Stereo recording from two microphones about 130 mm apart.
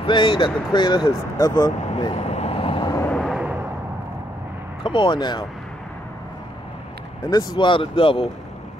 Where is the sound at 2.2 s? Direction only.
50° left (ahead or behind).